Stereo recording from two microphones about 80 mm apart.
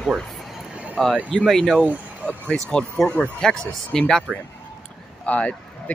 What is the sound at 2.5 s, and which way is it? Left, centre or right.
Speech, centre.